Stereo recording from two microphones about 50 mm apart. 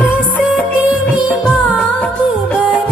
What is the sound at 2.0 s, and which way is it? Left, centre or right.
Music, left.